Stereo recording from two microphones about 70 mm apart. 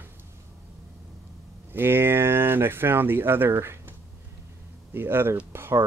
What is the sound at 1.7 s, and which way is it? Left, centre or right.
Speech, right.